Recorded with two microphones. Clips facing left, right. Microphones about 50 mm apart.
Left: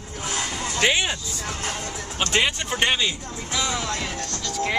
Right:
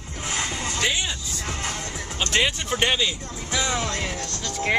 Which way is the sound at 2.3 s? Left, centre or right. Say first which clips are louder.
Even; centre.